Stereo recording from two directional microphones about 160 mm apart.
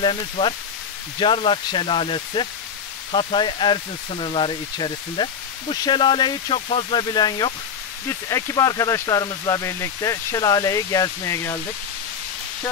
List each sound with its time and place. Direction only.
0.0 s speech: 30° left (ahead or behind)